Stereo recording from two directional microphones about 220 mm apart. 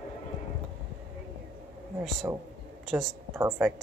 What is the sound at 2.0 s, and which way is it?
A woman's voice, centre (ahead or behind).